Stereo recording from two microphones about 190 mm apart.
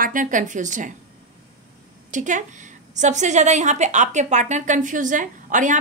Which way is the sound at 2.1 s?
40° right (ahead or behind).